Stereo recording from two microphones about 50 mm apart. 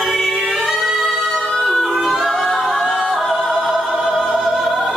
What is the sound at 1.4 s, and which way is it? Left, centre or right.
Music, centre.